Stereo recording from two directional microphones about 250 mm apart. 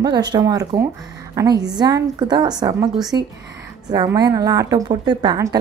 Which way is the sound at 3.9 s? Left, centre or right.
Centre.